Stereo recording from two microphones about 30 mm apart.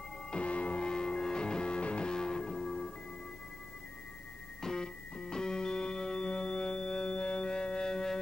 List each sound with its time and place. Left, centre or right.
0.3 s music: left
0.7 s music: left
1.8 s music: left
2.0 s music: left
4.7 s music: left